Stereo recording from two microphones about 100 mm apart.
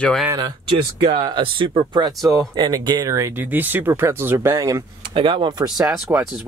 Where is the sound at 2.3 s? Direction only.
40° right (ahead or behind).